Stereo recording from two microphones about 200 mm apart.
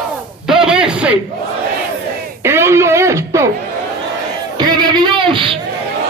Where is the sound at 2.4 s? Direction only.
15° right (ahead or behind).